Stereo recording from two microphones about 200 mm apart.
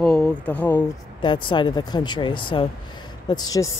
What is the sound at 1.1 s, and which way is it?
A woman's voice, 25° left (ahead or behind).